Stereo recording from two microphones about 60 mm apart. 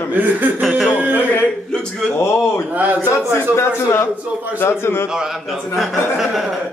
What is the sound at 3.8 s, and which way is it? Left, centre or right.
Speech, left.